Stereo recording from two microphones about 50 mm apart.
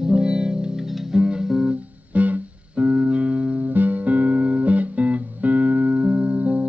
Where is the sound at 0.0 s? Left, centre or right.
Centre.